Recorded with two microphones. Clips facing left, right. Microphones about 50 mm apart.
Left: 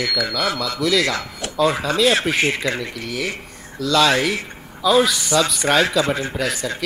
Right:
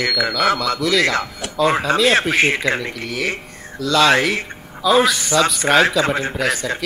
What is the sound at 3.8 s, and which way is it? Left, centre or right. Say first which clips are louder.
Speech: right 2 dB; centre.